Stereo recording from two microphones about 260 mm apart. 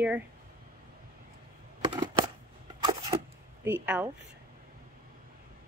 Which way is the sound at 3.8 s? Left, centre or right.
Centre.